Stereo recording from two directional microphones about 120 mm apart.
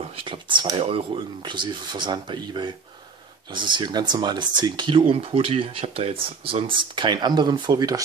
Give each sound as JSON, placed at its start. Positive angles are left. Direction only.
{"t": 0.1, "sound": "speech", "side_deg": -45}
{"t": 1.4, "sound": "speech", "side_deg": -40}
{"t": 5.1, "sound": "speech", "side_deg": -50}